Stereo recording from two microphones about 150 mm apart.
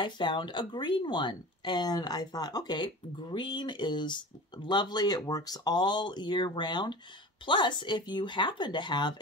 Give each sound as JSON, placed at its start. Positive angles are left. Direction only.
{"t": 0.0, "sound": "speech", "side_deg": 30}